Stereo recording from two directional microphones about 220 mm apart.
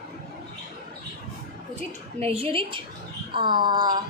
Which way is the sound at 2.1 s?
25° right (ahead or behind).